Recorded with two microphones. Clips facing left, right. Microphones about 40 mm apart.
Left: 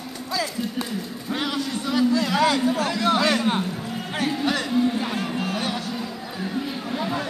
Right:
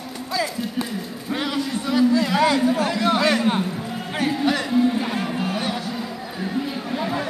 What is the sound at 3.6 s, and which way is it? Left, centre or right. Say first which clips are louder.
Run: right 2 dB; centre.